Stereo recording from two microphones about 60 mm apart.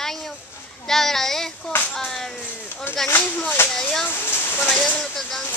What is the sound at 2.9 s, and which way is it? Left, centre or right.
Speech, left.